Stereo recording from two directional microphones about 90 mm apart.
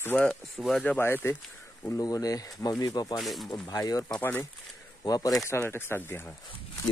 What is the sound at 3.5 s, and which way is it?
Speech, 40° left (ahead or behind).